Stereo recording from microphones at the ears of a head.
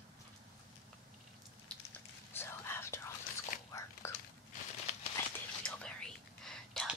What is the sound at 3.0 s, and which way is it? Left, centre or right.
Whispering, left.